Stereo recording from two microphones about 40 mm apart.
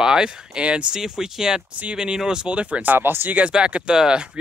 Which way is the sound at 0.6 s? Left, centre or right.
Right.